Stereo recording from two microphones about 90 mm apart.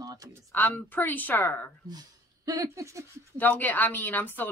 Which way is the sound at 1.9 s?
45° right (ahead or behind).